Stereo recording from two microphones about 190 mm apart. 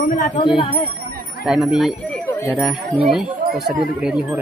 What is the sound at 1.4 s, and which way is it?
Speech, centre (ahead or behind).